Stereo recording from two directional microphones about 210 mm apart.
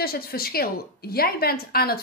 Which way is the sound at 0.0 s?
45° left (ahead or behind).